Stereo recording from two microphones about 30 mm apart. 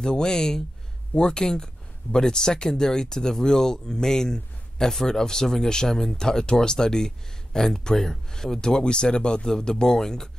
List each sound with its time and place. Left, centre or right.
0.0 s speech: left
6.1 s speech: left
8.5 s speech: left